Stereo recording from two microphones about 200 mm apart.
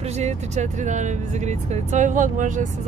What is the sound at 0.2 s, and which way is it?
Speech, 35° right (ahead or behind).